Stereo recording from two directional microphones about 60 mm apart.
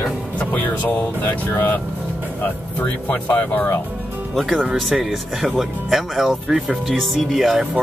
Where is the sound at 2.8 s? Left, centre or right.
Left.